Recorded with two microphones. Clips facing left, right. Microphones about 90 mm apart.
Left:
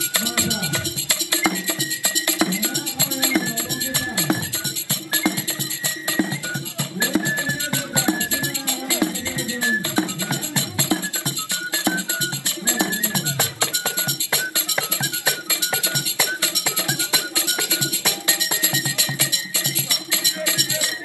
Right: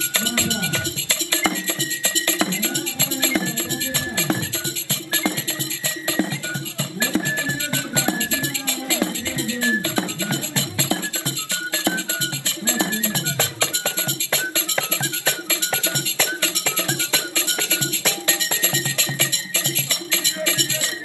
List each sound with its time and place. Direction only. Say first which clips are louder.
0.1 s music: right 1 dB; 15° left (ahead or behind)